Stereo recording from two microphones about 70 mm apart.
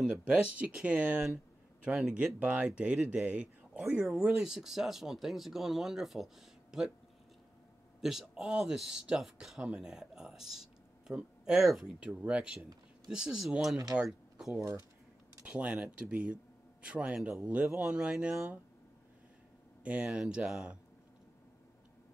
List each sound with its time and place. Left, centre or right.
0.2 s speech: centre
8.0 s speech: centre
11.9 s speech: centre
15.4 s speech: centre
19.8 s speech: centre